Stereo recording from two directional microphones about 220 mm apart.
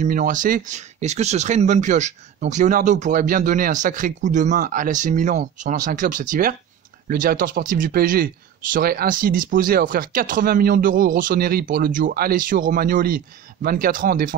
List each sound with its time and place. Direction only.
0.0 s speech: 35° right (ahead or behind)